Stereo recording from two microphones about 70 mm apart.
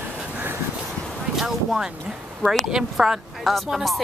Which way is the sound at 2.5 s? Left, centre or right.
Centre.